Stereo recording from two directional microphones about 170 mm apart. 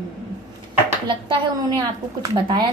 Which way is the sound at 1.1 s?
30° right (ahead or behind).